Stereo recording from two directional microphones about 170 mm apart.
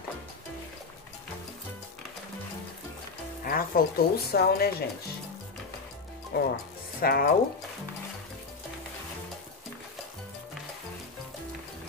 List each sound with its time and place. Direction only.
3.4 s a woman's voice: 60° left (ahead or behind)
6.3 s a woman's voice: 65° left (ahead or behind)